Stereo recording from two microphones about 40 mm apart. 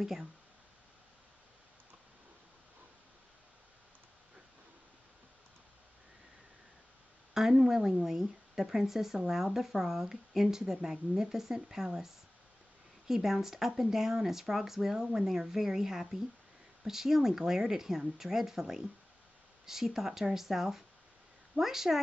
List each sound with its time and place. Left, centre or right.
7.6 s speech: centre